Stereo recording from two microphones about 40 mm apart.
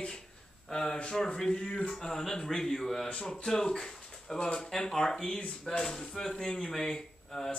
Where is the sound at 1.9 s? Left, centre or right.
Centre.